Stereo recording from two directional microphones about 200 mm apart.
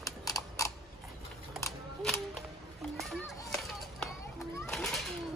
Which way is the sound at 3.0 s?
Centre (ahead or behind).